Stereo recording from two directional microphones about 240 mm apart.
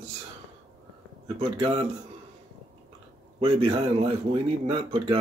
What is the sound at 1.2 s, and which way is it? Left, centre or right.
Speech, right.